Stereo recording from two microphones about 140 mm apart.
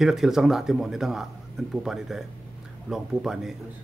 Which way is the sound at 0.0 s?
5° right (ahead or behind).